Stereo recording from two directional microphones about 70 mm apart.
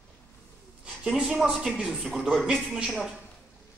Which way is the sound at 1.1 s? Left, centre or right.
Centre.